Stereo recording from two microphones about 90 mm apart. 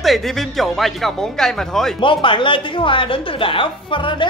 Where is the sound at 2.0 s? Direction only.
70° left (ahead or behind).